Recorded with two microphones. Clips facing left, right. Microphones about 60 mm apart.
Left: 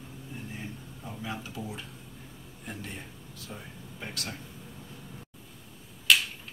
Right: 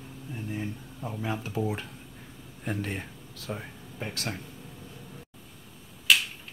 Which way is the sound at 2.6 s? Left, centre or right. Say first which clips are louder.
Right 8 dB; right.